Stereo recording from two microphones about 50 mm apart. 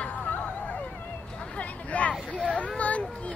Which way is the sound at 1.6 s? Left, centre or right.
Left.